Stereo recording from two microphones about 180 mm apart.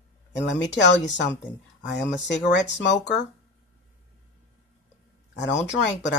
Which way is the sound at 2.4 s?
75° left (ahead or behind).